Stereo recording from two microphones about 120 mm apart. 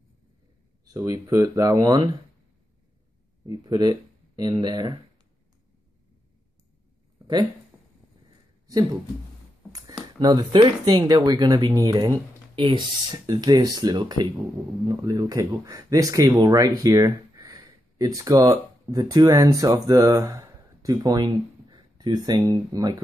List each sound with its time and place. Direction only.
0.8 s speech: 30° right (ahead or behind)
3.4 s speech: 35° right (ahead or behind)
9.7 s speech: 30° right (ahead or behind)